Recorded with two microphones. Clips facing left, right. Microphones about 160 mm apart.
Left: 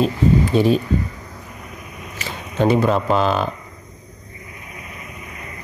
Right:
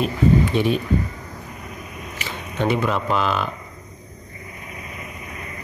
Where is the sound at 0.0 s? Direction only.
35° left (ahead or behind).